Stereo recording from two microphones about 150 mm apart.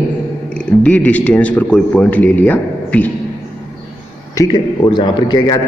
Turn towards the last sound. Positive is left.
turn(degrees=25)  # may be behind; listen again after turning